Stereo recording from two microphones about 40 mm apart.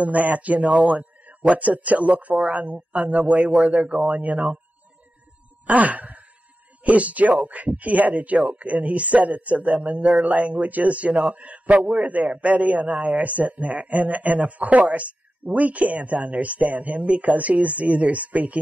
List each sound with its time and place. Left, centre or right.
0.0 s a man's voice: right
0.8 s a sound: right
1.5 s a man's voice: right
3.4 s speech: centre
4.1 s a man's voice: right
5.7 s a man's voice: right